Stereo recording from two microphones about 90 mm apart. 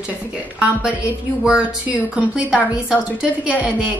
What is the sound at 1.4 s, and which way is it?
A woman's voice, 15° right (ahead or behind).